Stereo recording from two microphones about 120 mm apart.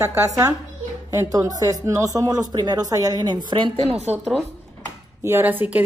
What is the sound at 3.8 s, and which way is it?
Speech, 60° right (ahead or behind).